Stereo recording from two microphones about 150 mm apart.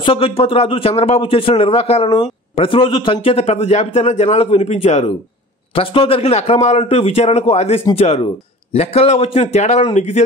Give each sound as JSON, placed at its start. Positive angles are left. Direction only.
{"t": 0.0, "sound": "a man's voice", "side_deg": 35}